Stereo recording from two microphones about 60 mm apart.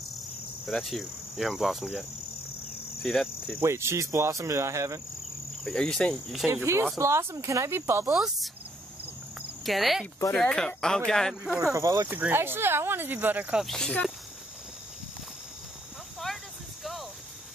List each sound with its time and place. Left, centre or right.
0.7 s cricket: centre
3.6 s speech: right
4.0 s speech: right
5.8 s speech: centre
6.5 s speech: right
8.1 s speech: centre
9.7 s cricket: centre
10.3 s speech: centre
11.6 s speech: right
12.1 s speech: right
13.7 s speech: centre